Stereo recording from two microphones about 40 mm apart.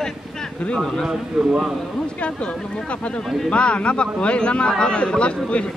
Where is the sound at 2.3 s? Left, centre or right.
Left.